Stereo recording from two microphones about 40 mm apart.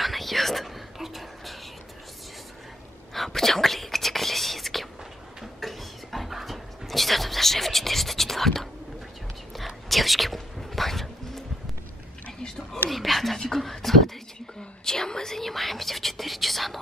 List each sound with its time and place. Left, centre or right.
0.0 s whispering: centre
3.1 s whispering: centre
5.4 s a sound: centre
9.8 s a sound: centre
12.9 s whispering: centre
14.6 s whispering: centre